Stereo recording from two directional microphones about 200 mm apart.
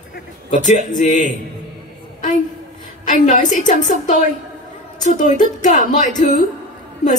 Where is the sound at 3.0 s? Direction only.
40° left (ahead or behind).